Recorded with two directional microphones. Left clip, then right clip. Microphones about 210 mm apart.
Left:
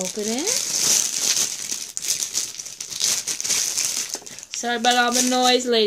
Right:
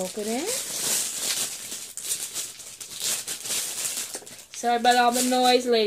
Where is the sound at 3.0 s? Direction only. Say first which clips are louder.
Left 7 dB; 45° left (ahead or behind).